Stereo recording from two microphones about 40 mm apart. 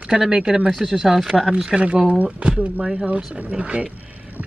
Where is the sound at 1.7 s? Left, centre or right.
Right.